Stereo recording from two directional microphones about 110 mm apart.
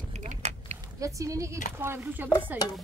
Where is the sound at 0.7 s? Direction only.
30° right (ahead or behind).